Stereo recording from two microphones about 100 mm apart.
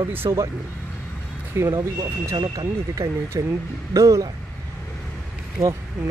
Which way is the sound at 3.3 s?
30° right (ahead or behind).